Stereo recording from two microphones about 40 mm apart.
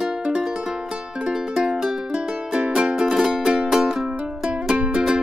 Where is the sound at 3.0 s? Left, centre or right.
Centre.